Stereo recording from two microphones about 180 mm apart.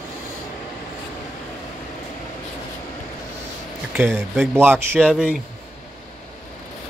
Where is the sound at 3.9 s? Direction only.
10° right (ahead or behind).